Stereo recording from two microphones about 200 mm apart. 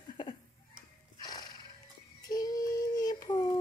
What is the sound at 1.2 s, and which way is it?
Horse, 20° left (ahead or behind).